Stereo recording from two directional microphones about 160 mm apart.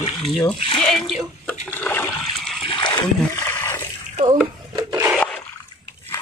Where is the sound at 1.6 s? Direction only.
15° left (ahead or behind).